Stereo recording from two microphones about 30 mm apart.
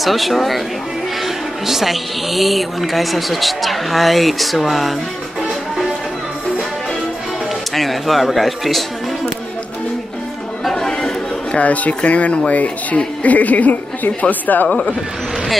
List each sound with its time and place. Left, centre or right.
0.0 s speech: centre
7.7 s speech: centre
10.7 s chatter: centre
11.5 s speech: left
14.5 s speech: left